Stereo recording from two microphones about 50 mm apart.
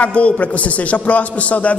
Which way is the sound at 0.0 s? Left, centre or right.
Left.